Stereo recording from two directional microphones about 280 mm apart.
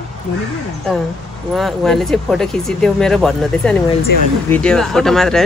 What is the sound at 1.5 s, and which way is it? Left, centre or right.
Speech, centre.